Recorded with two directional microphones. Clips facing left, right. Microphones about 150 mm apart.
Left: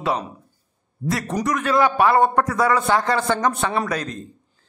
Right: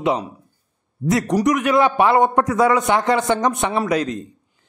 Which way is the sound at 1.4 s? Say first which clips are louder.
Right 1 dB; 20° right (ahead or behind).